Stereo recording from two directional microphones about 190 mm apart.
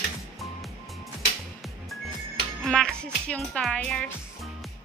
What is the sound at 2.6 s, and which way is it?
Speech, centre (ahead or behind).